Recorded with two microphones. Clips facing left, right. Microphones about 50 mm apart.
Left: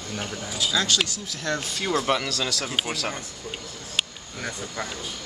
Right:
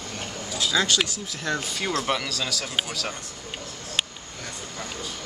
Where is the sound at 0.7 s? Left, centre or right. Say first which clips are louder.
Right 2 dB; right.